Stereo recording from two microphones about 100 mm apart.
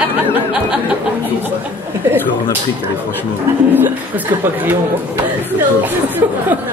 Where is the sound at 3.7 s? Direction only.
20° right (ahead or behind).